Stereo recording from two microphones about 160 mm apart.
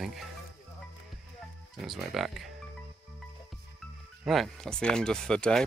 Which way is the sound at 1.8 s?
Centre (ahead or behind).